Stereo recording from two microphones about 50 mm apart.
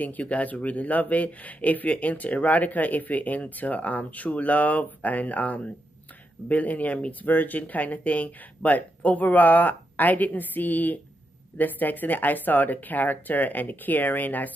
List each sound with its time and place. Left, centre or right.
0.0 s speech: left